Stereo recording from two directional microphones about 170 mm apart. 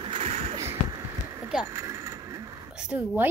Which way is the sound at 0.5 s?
20° right (ahead or behind).